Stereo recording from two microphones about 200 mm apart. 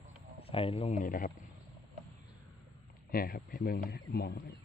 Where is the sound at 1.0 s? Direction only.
45° left (ahead or behind).